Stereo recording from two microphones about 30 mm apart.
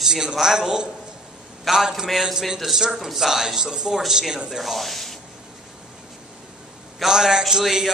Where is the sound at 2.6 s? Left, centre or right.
Centre.